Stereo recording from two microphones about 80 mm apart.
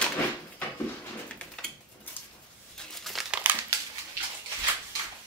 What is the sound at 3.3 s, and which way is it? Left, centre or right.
Crumpling, right.